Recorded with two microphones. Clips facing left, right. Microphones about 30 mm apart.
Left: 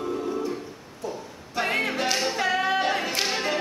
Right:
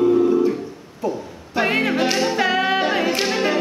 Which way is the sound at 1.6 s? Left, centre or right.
Centre.